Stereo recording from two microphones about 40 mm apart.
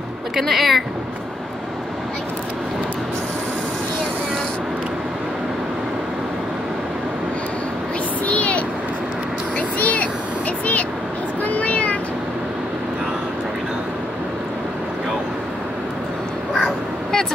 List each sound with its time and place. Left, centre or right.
0.4 s speech: centre
8.3 s vehicle: left
11.4 s a sound: left
16.6 s crow: centre